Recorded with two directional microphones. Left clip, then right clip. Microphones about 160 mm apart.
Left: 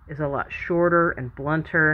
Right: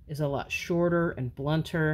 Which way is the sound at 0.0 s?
35° right (ahead or behind).